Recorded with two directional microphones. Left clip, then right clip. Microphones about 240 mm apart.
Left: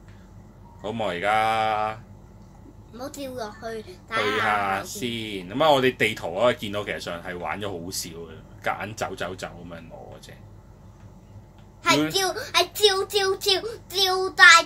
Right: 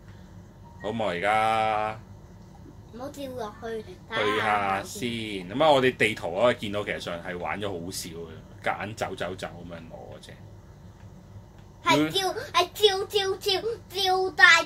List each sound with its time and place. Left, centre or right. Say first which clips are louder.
0.8 s speech: left 1 dB; centre
3.0 s a child's voice: left 2 dB; centre
4.2 s speech: left 1 dB; centre
12.1 s a child's voice: left 3 dB; centre